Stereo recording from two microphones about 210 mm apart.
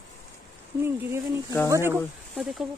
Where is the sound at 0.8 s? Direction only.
10° right (ahead or behind).